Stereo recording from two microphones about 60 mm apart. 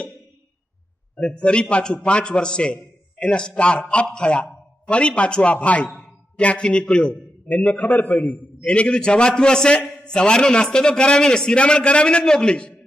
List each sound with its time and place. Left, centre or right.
1.1 s a man's voice: centre